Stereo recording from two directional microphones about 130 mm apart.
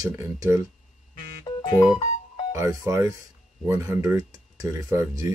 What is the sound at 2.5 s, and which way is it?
Speech, 25° right (ahead or behind).